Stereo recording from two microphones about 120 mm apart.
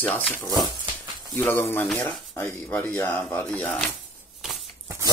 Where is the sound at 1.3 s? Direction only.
20° left (ahead or behind).